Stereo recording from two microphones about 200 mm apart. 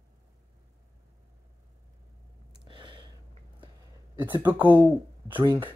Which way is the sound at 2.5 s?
25° right (ahead or behind).